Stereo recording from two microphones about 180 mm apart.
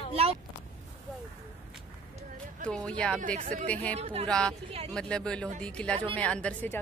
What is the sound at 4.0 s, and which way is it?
Speech, 35° right (ahead or behind).